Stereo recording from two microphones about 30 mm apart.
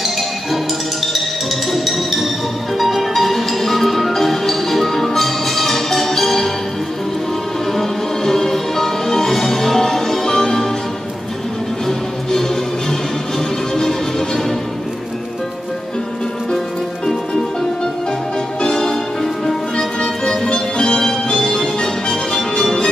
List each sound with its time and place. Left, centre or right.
1.7 s music: centre
7.7 s music: centre
13.7 s music: centre
18.6 s music: left
20.4 s music: left